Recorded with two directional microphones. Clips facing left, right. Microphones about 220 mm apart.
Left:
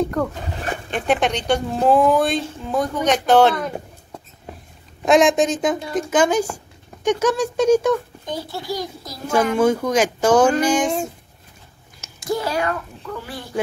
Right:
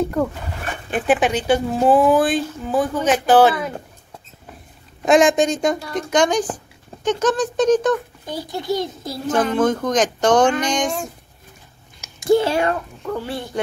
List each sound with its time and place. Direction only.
0.0 s speech: 10° right (ahead or behind)
5.0 s speech: centre (ahead or behind)
8.3 s speech: 15° right (ahead or behind)
9.6 s speech: 10° left (ahead or behind)
12.3 s speech: 25° right (ahead or behind)